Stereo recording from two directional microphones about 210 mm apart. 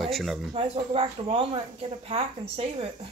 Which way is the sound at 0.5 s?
25° right (ahead or behind).